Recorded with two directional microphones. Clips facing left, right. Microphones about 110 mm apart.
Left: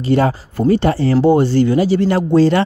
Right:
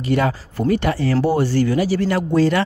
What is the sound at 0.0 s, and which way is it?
Speech, 30° left (ahead or behind).